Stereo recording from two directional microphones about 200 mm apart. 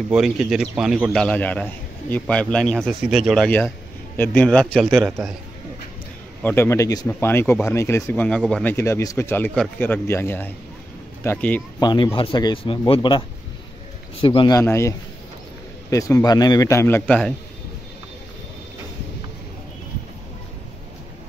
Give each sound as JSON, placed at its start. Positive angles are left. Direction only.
{"t": 0.1, "sound": "a man's voice", "side_deg": -5}
{"t": 1.2, "sound": "a man's voice", "side_deg": 10}
{"t": 6.4, "sound": "a man's voice", "side_deg": 10}
{"t": 11.8, "sound": "speech", "side_deg": 20}
{"t": 14.2, "sound": "a man's voice", "side_deg": 25}